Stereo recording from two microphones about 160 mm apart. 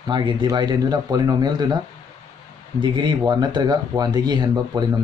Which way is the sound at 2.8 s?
30° right (ahead or behind).